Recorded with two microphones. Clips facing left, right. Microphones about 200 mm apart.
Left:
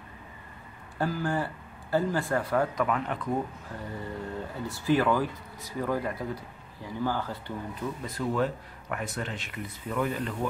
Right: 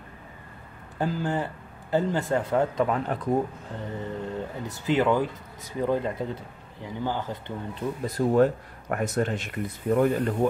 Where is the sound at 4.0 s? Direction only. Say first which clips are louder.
Right 4 dB; 20° right (ahead or behind).